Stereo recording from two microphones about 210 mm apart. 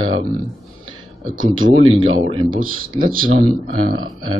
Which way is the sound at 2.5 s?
40° right (ahead or behind).